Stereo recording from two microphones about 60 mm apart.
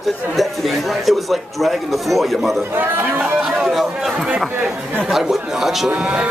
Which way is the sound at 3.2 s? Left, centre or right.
Centre.